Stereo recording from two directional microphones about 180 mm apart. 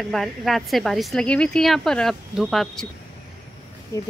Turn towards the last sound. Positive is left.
turn(degrees=15)  # may be behind; listen again after turning